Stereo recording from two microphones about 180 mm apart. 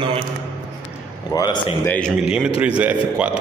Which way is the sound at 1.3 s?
25° left (ahead or behind).